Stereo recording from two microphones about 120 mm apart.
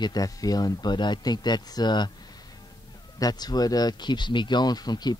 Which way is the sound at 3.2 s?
35° left (ahead or behind).